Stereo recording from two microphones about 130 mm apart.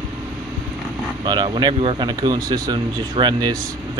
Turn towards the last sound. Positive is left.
turn(degrees=-30)  # may be behind; listen again after turning